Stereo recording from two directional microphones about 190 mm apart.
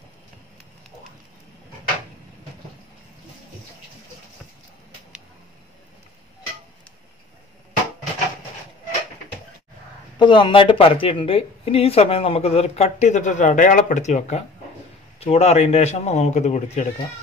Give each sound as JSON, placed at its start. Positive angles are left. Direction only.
{"t": 10.1, "sound": "speech", "side_deg": 25}